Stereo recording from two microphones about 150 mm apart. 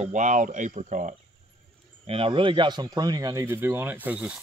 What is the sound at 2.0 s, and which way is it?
Speech, 40° right (ahead or behind).